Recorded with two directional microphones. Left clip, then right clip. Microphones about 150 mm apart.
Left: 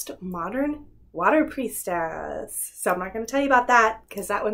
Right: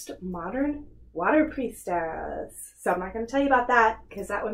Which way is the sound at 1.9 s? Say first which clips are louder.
Left 2 dB; 25° left (ahead or behind).